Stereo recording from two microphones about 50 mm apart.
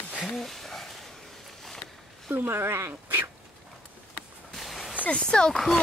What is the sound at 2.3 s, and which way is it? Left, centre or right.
Speech, right.